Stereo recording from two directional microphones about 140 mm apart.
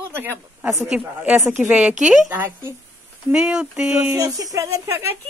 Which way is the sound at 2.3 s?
15° right (ahead or behind).